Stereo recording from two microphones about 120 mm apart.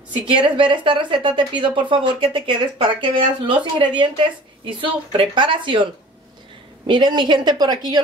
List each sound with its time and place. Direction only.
0.4 s a woman's voice: 45° right (ahead or behind)
6.9 s a woman's voice: 40° right (ahead or behind)